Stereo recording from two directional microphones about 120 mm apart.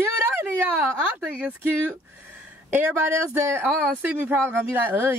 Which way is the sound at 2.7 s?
20° right (ahead or behind).